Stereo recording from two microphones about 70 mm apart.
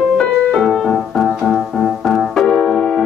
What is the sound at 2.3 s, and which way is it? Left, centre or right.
Piano, centre.